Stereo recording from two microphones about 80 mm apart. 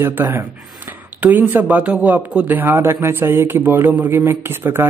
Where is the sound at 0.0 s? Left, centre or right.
Right.